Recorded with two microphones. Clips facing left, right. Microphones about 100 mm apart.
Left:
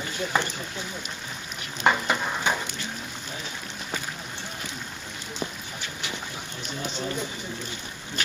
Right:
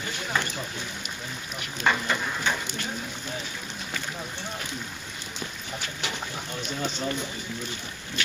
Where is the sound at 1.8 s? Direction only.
15° left (ahead or behind).